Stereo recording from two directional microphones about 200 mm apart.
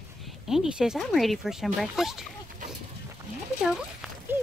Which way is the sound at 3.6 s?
Centre (ahead or behind).